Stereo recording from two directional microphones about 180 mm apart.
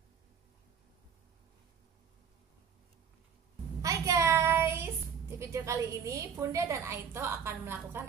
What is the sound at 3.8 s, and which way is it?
Child singing, 20° right (ahead or behind).